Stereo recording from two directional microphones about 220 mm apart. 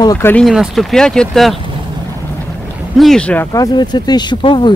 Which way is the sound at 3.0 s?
Centre (ahead or behind).